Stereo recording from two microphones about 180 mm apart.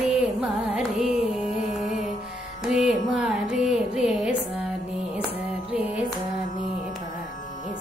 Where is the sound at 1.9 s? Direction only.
45° left (ahead or behind).